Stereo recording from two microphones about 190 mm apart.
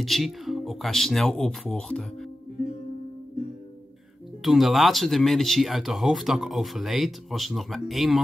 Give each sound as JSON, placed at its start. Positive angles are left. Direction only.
{"t": 0.0, "sound": "speech", "side_deg": 0}
{"t": 4.4, "sound": "speech", "side_deg": 0}